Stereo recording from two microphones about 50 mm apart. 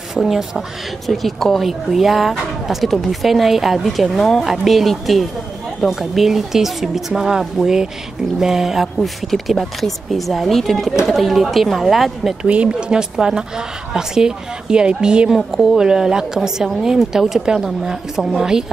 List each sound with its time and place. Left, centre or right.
0.1 s a woman's voice: centre
9.0 s speech: centre
12.4 s speech: right
13.1 s a woman's voice: centre
15.3 s a woman's voice: centre